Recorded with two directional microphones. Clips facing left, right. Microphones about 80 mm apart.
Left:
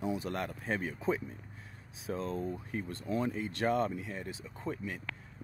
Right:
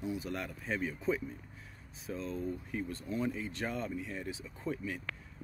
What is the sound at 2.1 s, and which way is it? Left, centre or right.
Speech, left.